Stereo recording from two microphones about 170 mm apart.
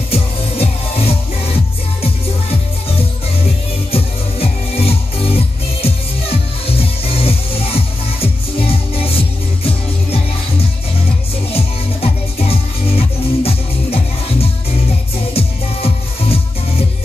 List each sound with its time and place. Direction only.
0.1 s music: 35° left (ahead or behind)
3.9 s music: 35° left (ahead or behind)
11.5 s music: 35° left (ahead or behind)